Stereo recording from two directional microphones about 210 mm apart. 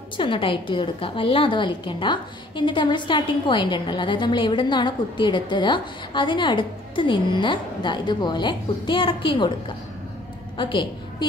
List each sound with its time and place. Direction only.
0.2 s a woman's voice: 25° left (ahead or behind)
10.6 s a woman's voice: 20° left (ahead or behind)